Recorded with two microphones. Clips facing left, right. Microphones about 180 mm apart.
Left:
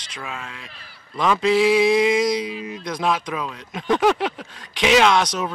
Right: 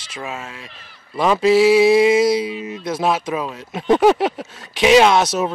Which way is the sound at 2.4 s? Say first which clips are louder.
Right 4 dB; 25° right (ahead or behind).